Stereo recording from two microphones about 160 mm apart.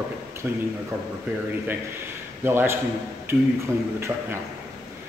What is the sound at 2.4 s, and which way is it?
Speech, 15° right (ahead or behind).